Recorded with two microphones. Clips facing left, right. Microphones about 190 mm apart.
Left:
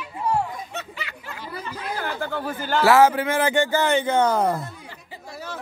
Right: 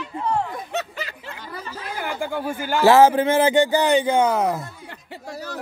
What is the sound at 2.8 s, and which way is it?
Speech, 30° right (ahead or behind).